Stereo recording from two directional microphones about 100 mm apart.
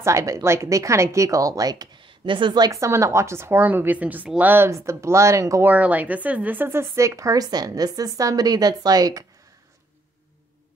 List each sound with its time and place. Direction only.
0.0 s speech: 30° right (ahead or behind)
2.0 s a sound: 55° right (ahead or behind)
2.7 s speech: 30° right (ahead or behind)
5.7 s speech: 15° right (ahead or behind); by 9.2 s 40° right (ahead or behind)